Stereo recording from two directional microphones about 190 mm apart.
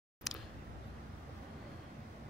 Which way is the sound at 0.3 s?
Centre (ahead or behind).